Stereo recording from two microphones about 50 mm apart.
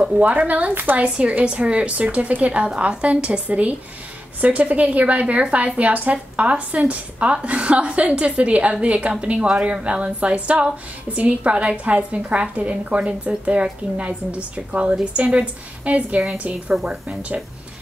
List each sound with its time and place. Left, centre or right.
0.2 s a woman's voice: right
1.0 s a woman's voice: right